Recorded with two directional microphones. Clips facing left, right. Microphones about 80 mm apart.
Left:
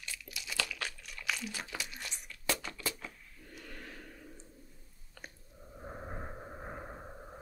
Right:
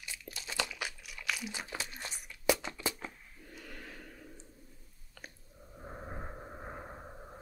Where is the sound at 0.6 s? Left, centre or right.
Centre.